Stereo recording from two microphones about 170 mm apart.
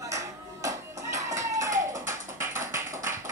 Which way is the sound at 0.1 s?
20° right (ahead or behind).